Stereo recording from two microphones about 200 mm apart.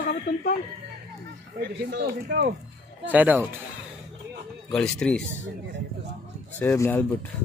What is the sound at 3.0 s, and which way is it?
Speech, 10° right (ahead or behind).